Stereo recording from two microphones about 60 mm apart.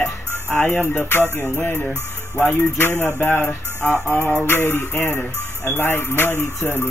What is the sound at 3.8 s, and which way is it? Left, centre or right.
Music, centre.